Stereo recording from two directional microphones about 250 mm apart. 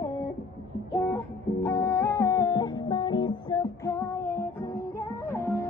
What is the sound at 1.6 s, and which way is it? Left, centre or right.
Music, centre.